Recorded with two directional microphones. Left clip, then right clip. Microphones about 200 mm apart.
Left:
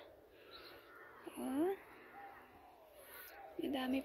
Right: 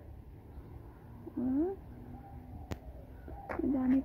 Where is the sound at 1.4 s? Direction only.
25° left (ahead or behind).